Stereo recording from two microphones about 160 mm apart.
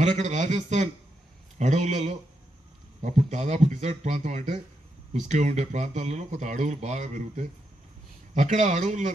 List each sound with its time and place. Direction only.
0.0 s speech: 45° right (ahead or behind)